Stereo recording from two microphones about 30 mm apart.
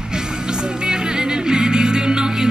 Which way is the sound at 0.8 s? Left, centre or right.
Right.